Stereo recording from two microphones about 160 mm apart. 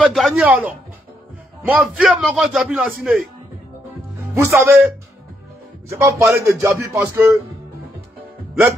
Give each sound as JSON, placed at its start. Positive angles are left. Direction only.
{"t": 0.0, "sound": "a man's voice", "side_deg": 0}
{"t": 4.4, "sound": "speech", "side_deg": -15}